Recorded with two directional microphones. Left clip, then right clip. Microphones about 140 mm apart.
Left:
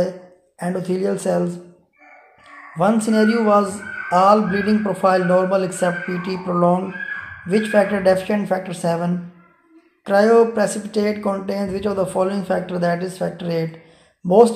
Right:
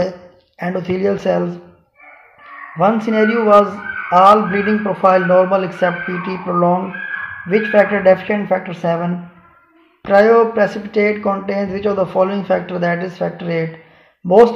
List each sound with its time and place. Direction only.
0.8 s speech: 25° right (ahead or behind)
2.8 s speech: 20° right (ahead or behind)